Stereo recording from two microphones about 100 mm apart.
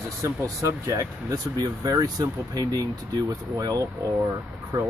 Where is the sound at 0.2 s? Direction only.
30° right (ahead or behind).